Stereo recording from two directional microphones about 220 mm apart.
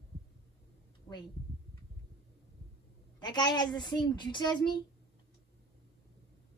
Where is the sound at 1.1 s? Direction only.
15° left (ahead or behind).